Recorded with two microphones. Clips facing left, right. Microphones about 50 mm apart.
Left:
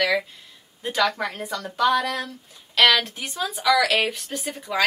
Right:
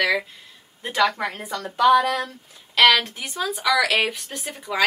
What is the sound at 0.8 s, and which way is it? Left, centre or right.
A woman's voice, right.